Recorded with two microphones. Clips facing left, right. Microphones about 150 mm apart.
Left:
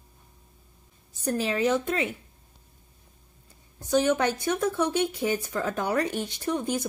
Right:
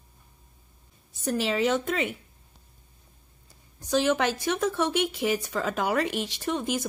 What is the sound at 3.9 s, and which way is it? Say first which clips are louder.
Speech: left 1 dB; 90° right.